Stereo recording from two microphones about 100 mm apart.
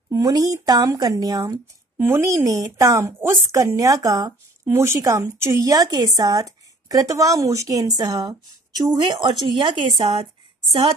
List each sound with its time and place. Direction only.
0.1 s a woman's voice: 35° right (ahead or behind); by 10.2 s 55° right (ahead or behind)